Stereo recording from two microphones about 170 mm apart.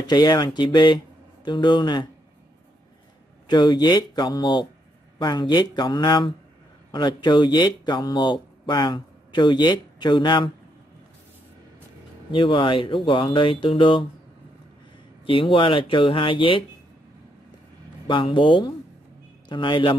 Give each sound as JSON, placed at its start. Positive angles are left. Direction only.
{"t": 0.0, "sound": "speech", "side_deg": 25}
{"t": 3.4, "sound": "speech", "side_deg": 25}
{"t": 12.3, "sound": "speech", "side_deg": 30}
{"t": 15.2, "sound": "speech", "side_deg": 30}
{"t": 18.0, "sound": "speech", "side_deg": 30}